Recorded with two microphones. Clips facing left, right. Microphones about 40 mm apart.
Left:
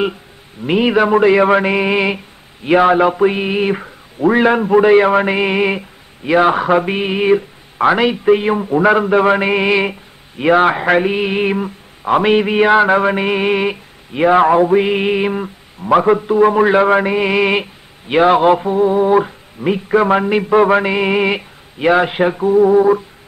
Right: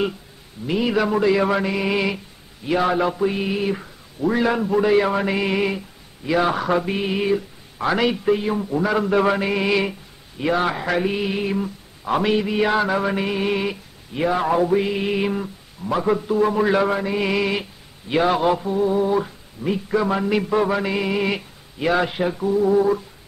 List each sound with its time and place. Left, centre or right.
0.7 s a man's voice: left
8.3 s a man's voice: left
8.9 s a man's voice: left
16.9 s a man's voice: left
17.2 s a man's voice: left
20.3 s a sound: left
20.6 s a man's voice: left